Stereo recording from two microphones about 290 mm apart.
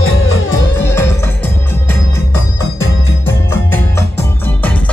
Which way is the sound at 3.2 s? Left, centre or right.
Centre.